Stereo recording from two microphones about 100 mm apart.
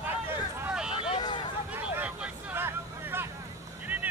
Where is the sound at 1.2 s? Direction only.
55° left (ahead or behind).